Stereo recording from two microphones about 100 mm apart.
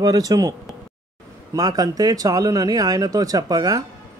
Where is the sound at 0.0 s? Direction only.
40° right (ahead or behind).